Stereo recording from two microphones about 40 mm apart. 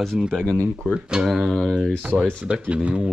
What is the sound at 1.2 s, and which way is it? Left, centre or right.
Speech, centre.